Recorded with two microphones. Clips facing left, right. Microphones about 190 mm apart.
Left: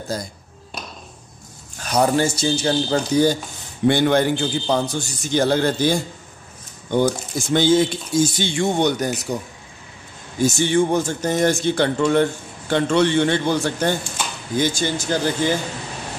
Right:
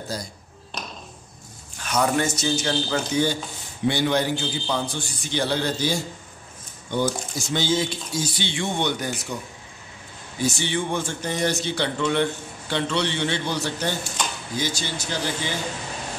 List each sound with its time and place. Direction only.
0.1 s speech: 50° left (ahead or behind)
1.8 s speech: 35° left (ahead or behind)
3.8 s speech: 55° left (ahead or behind)
10.4 s speech: 45° left (ahead or behind)